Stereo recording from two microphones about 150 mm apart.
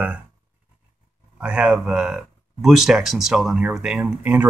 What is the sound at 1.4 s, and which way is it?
Speech, 5° right (ahead or behind).